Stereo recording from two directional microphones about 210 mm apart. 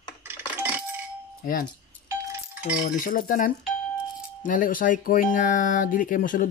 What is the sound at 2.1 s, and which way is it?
Doorbell, 15° right (ahead or behind).